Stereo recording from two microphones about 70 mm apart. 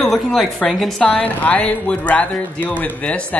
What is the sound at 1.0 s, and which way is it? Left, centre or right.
Speech, centre.